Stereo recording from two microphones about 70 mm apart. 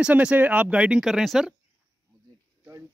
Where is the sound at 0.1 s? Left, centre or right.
Right; by 1.5 s centre.